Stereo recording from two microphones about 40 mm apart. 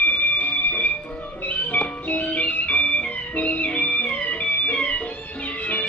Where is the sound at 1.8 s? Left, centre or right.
Left.